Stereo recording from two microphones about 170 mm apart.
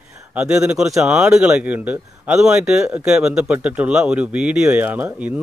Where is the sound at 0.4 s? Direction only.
5° right (ahead or behind).